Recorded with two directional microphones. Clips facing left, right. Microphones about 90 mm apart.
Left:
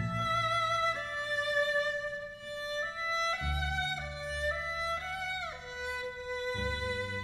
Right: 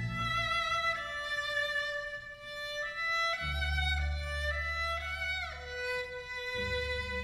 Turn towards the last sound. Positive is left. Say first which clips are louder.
# left 1 dB
turn(degrees=35)  # may be behind; listen again after turning